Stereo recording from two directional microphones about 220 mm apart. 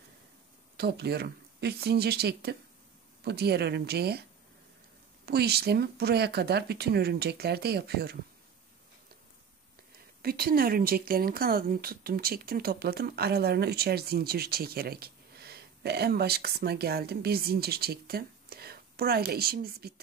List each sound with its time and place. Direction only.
0.7 s speech: 45° right (ahead or behind)
5.2 s speech: 45° right (ahead or behind)
10.2 s speech: 40° right (ahead or behind)